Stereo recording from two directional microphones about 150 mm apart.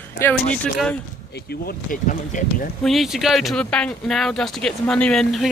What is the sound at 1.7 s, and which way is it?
Speech, 65° left (ahead or behind).